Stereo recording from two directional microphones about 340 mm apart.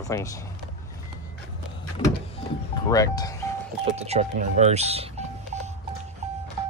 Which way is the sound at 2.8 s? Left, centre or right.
Centre.